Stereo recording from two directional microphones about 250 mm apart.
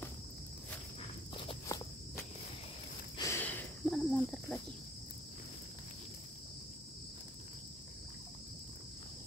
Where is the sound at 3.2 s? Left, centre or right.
Centre.